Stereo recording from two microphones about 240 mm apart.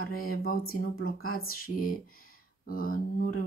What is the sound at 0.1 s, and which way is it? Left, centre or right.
Speech, left.